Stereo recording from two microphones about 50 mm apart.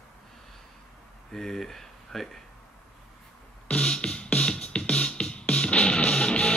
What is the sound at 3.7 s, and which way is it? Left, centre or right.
Music, centre.